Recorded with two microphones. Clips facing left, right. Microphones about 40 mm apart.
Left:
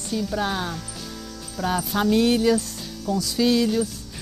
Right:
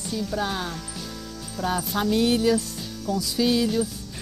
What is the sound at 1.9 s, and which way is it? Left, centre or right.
Speech, centre.